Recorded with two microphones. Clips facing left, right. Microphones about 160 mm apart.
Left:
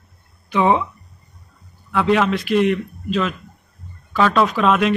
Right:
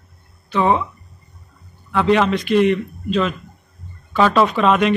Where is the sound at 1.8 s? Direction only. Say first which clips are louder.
Right 1 dB; centre (ahead or behind).